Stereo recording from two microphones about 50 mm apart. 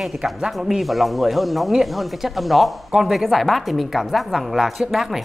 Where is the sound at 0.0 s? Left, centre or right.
Centre.